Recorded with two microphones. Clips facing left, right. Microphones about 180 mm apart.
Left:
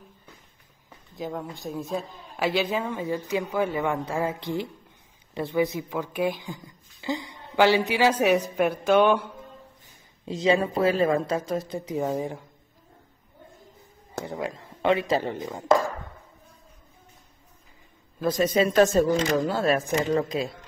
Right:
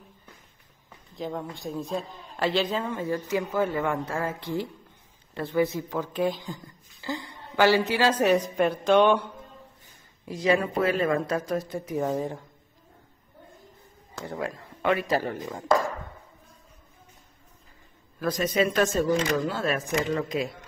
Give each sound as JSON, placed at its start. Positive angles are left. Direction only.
{"t": 1.1, "sound": "a woman's voice", "side_deg": 0}
{"t": 10.2, "sound": "speech", "side_deg": 25}
{"t": 14.2, "sound": "speech", "side_deg": 20}
{"t": 18.2, "sound": "speech", "side_deg": 30}